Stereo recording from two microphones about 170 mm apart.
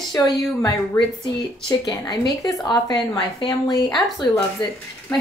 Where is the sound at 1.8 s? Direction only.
20° left (ahead or behind).